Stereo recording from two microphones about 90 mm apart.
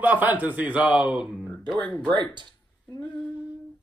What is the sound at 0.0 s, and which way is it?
A man's voice, 20° right (ahead or behind).